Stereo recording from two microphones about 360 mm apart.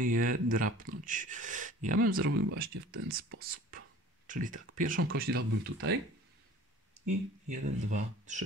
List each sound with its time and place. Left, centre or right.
0.5 s speech: right
3.1 s speech: right
7.1 s speech: centre